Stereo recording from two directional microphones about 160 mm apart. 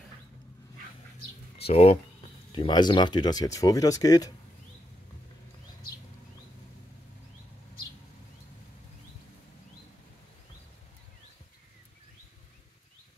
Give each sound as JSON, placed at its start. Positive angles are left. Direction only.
{"t": 1.6, "sound": "speech", "side_deg": 40}